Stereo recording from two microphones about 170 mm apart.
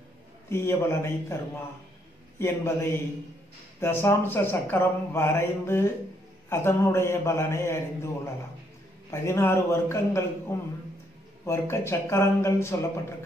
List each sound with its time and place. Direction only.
0.5 s speech: 15° left (ahead or behind)
9.1 s speech: 15° left (ahead or behind)